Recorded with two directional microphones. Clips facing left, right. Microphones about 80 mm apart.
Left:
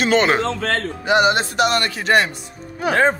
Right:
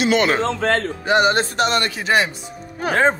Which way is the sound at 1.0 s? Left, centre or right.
Right.